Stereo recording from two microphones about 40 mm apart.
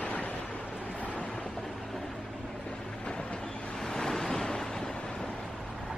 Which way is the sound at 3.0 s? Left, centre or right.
Left.